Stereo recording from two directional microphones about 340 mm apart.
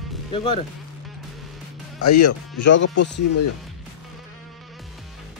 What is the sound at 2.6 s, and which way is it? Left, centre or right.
Speech, left.